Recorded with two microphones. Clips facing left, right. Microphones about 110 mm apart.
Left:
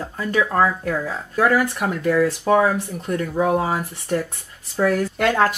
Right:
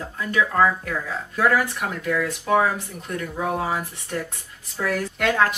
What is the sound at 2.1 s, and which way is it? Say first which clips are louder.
Speech: left 5 dB; 35° left (ahead or behind).